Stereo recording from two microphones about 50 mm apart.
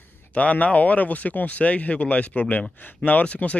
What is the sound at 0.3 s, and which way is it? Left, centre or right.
Speech, left.